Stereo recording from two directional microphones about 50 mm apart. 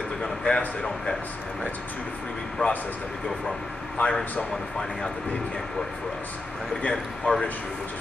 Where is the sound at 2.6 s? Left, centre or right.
Left.